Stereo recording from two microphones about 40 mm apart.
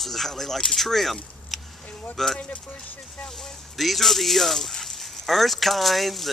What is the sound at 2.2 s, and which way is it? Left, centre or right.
Speech, centre.